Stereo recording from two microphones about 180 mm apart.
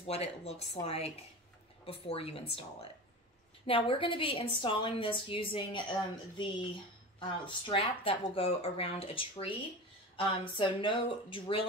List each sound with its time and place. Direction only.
0.0 s a woman's voice: 35° left (ahead or behind)